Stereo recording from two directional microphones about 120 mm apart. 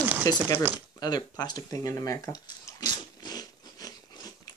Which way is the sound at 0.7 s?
35° left (ahead or behind).